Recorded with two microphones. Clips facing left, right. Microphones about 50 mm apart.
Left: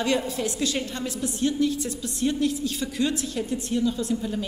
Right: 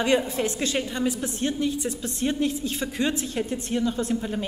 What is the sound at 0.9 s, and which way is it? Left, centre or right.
Speech, centre.